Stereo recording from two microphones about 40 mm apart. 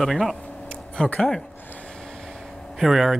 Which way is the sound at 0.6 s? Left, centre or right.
Left.